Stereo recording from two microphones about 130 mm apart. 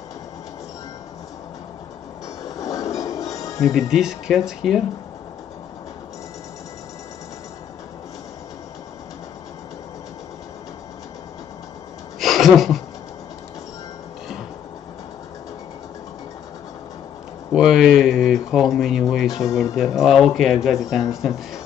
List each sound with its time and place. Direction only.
2.5 s train: 25° left (ahead or behind)
3.0 s music: 25° left (ahead or behind)
3.9 s speech: 5° right (ahead or behind)
12.2 s a sound: centre (ahead or behind)
17.5 s speech: 5° right (ahead or behind)